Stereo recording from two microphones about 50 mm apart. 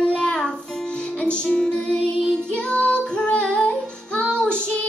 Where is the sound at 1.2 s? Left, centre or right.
Left.